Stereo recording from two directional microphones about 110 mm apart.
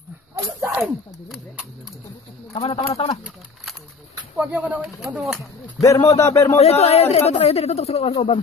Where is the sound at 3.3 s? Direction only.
5° right (ahead or behind).